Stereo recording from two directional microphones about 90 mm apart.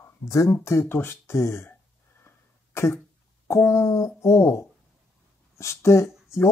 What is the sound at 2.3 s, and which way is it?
Cough, 30° left (ahead or behind).